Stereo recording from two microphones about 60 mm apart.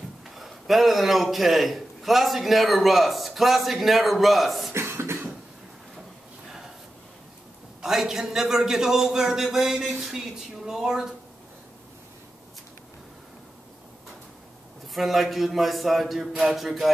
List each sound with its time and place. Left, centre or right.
0.4 s a man's voice: centre
4.7 s cough: right
7.8 s a man's voice: centre
15.0 s a man's voice: centre